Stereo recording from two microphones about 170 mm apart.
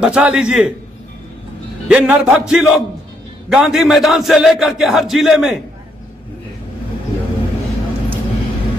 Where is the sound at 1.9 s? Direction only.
10° right (ahead or behind).